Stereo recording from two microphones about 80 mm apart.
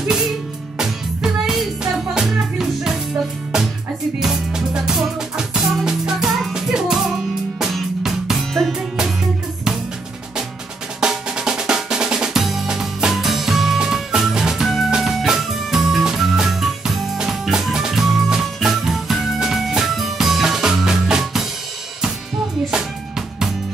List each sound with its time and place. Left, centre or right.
0.7 s music: centre
11.0 s drum: centre
22.7 s music: centre